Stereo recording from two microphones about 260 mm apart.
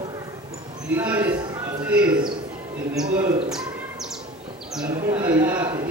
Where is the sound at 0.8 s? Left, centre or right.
Centre.